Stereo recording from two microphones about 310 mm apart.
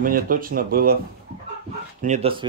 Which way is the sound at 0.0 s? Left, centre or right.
Right.